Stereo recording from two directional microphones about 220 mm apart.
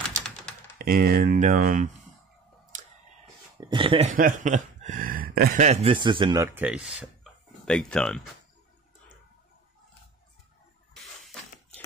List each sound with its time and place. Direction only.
0.7 s speech: 40° right (ahead or behind)
3.5 s speech: 20° right (ahead or behind)
4.1 s speech: 40° right (ahead or behind); by 8.3 s 5° left (ahead or behind)
11.1 s a sound: centre (ahead or behind)